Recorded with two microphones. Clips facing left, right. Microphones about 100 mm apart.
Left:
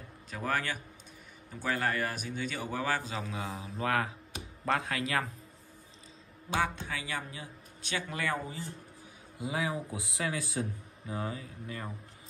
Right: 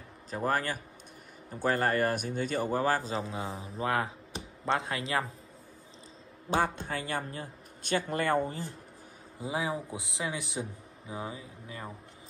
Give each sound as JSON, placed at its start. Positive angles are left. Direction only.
{"t": 0.3, "sound": "a man's voice", "side_deg": -40}
{"t": 6.5, "sound": "a man's voice", "side_deg": -45}
{"t": 9.4, "sound": "speech", "side_deg": -30}